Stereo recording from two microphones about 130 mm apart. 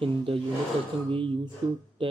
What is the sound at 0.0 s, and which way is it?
A man's voice, 45° right (ahead or behind).